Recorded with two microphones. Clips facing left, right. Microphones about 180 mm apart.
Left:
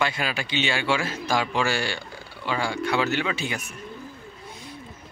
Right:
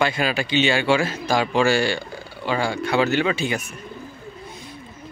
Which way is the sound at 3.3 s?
90° right.